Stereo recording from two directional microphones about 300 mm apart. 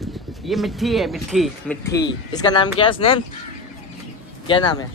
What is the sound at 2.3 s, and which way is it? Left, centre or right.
Speech, centre.